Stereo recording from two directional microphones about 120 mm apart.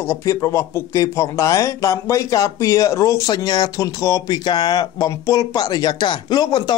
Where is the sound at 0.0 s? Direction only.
25° left (ahead or behind).